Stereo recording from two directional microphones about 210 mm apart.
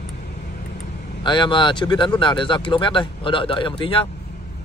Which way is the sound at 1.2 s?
20° left (ahead or behind).